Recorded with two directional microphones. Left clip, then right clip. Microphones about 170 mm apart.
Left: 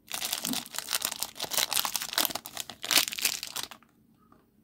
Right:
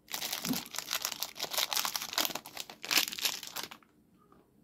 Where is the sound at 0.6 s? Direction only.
20° left (ahead or behind).